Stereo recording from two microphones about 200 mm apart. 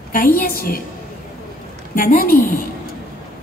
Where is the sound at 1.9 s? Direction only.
45° left (ahead or behind).